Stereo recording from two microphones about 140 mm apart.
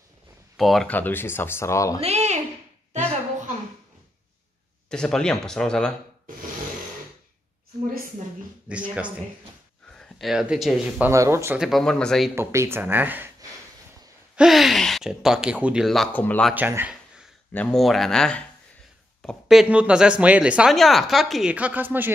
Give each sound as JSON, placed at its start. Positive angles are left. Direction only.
{"t": 0.6, "sound": "speech", "side_deg": 0}
{"t": 0.9, "sound": "speech", "side_deg": 15}
{"t": 2.0, "sound": "a sound", "side_deg": -50}
{"t": 4.8, "sound": "speech", "side_deg": 5}
{"t": 9.9, "sound": "speech", "side_deg": 0}
{"t": 11.1, "sound": "speech", "side_deg": -20}
{"t": 11.5, "sound": "speech", "side_deg": 0}
{"t": 12.4, "sound": "speech", "side_deg": -20}
{"t": 14.3, "sound": "speech", "side_deg": -5}
{"t": 16.1, "sound": "speech", "side_deg": 10}
{"t": 16.5, "sound": "a sound", "side_deg": -15}
{"t": 17.5, "sound": "speech", "side_deg": 10}
{"t": 17.7, "sound": "speech", "side_deg": 0}
{"t": 19.4, "sound": "speech", "side_deg": -5}